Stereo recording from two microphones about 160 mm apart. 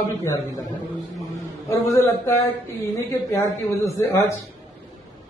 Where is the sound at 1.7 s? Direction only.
15° left (ahead or behind).